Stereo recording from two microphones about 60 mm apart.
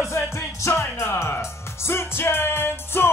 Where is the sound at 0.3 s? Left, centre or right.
Left.